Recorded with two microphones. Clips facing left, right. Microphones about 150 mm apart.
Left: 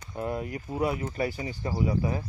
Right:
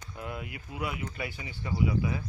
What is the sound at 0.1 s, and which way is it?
Speech, 35° left (ahead or behind).